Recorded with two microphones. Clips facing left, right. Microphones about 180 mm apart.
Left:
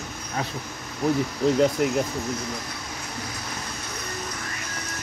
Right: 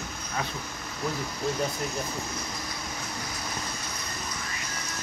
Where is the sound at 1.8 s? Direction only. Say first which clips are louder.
Left 10 dB; 75° left (ahead or behind).